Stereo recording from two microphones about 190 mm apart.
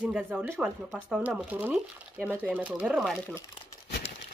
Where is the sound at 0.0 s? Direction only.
5° right (ahead or behind).